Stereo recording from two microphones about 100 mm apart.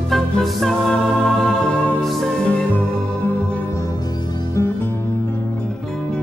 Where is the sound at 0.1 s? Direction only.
Centre (ahead or behind).